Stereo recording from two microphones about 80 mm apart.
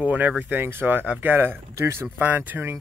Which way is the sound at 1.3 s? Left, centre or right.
Right.